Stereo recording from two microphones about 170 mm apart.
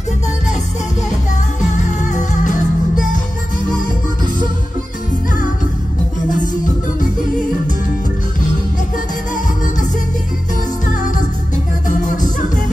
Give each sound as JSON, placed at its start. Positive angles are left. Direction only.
{"t": 1.8, "sound": "music", "side_deg": 45}